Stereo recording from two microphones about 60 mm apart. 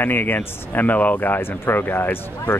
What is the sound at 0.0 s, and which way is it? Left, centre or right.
Speech, left.